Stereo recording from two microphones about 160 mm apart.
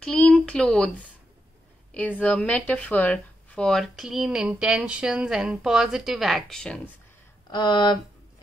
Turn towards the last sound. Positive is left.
turn(degrees=25)  # may be behind; listen again after turning